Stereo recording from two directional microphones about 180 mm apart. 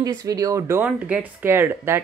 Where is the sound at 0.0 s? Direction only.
20° right (ahead or behind).